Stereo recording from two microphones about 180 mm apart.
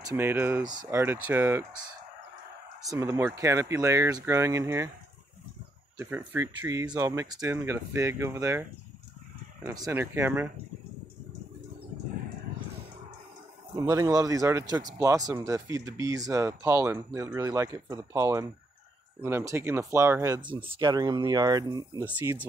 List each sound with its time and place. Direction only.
0.1 s speech: 10° right (ahead or behind)
5.9 s speech: 10° right (ahead or behind)
13.7 s speech: 20° right (ahead or behind)